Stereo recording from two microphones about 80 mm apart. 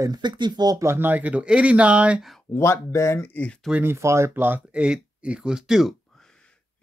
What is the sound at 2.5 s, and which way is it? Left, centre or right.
Speech, left.